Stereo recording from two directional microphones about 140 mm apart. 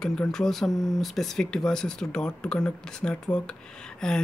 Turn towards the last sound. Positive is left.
turn(degrees=5)  # may be behind; listen again after turning